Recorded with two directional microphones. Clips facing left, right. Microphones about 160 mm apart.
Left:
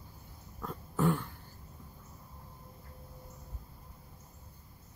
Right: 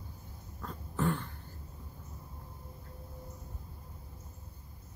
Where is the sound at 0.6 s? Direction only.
5° left (ahead or behind).